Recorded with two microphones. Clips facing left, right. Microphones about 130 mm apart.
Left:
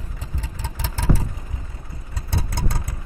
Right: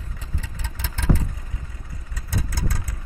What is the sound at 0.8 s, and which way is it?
Vehicle, 35° left (ahead or behind).